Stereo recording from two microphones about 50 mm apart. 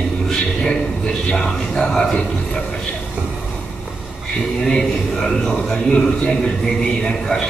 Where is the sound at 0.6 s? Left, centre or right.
Centre.